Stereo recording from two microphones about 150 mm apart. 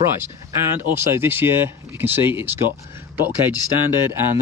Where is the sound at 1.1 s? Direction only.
15° right (ahead or behind).